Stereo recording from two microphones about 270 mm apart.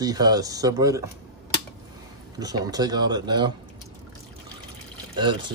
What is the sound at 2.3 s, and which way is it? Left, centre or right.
Speech, centre.